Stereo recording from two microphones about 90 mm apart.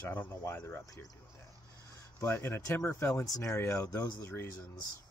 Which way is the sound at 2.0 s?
30° left (ahead or behind).